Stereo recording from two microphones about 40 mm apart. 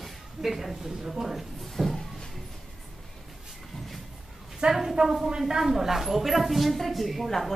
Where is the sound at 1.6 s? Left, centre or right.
Centre.